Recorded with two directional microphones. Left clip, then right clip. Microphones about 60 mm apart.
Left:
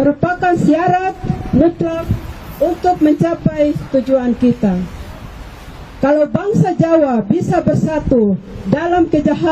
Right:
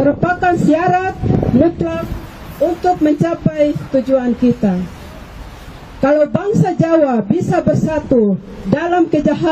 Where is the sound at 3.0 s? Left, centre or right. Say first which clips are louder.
Left 1 dB; right.